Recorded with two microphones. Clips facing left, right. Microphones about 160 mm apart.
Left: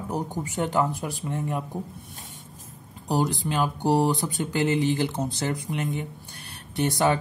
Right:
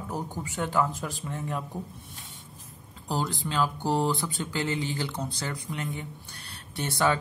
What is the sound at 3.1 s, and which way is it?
Speech, 20° left (ahead or behind).